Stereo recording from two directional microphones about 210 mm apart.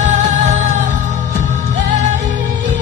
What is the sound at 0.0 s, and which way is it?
Music, 35° right (ahead or behind).